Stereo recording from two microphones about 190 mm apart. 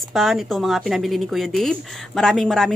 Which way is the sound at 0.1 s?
Centre (ahead or behind).